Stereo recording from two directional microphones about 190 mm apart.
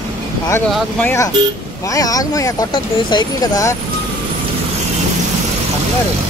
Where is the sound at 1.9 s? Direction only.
20° left (ahead or behind).